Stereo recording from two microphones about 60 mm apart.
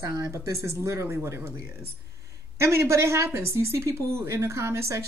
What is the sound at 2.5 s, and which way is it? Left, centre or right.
A woman's voice, right.